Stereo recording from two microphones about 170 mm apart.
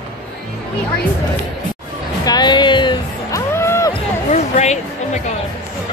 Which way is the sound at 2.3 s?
25° left (ahead or behind).